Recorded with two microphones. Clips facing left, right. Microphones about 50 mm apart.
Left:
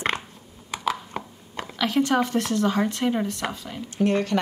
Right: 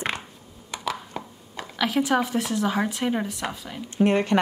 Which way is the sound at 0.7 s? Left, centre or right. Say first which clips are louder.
Left 3 dB; left.